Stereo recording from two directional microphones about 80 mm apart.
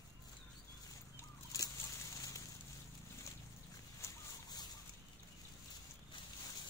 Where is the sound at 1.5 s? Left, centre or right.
Left.